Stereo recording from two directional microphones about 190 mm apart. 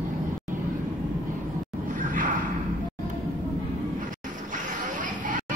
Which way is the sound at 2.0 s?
45° right (ahead or behind).